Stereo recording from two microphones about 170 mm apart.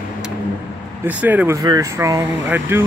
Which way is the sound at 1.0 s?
10° right (ahead or behind).